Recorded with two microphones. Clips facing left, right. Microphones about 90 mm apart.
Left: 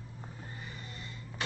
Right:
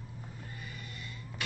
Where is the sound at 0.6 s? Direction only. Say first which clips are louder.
Even; 30° left (ahead or behind).